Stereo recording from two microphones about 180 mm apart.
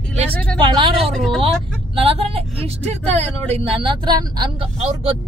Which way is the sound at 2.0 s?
30° right (ahead or behind).